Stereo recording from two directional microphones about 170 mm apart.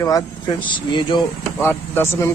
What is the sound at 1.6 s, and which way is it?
Speech, 15° left (ahead or behind).